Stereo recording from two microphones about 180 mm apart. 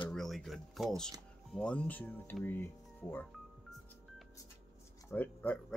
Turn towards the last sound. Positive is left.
turn(degrees=10)  # may be behind; listen again after turning